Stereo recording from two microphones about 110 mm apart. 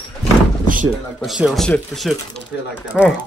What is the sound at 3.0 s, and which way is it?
Speech, 10° left (ahead or behind).